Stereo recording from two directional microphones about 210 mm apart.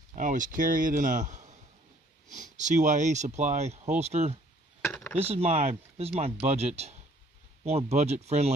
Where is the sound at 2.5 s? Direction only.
35° right (ahead or behind).